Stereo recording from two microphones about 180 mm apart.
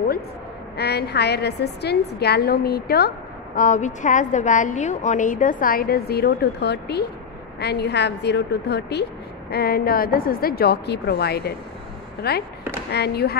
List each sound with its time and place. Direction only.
0.7 s a woman's voice: 65° left (ahead or behind)
3.5 s a woman's voice: 45° left (ahead or behind); by 13.4 s 60° left (ahead or behind)